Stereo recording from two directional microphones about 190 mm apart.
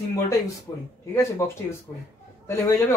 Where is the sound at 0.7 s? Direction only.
15° left (ahead or behind).